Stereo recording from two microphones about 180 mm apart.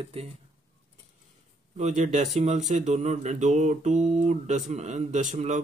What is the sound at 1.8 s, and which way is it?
Speech, 40° right (ahead or behind).